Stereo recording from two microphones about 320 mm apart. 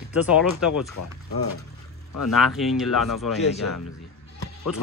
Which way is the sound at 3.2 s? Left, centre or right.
Left.